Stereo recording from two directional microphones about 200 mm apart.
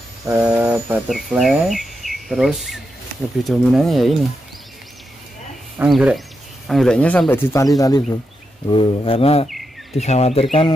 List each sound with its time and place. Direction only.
0.3 s mantra: 15° right (ahead or behind)
0.7 s speech: 10° right (ahead or behind)
5.8 s speech: 5° right (ahead or behind); by 10.7 s 30° left (ahead or behind)